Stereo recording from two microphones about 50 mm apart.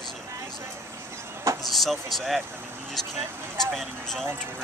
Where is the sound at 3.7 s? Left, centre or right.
Centre.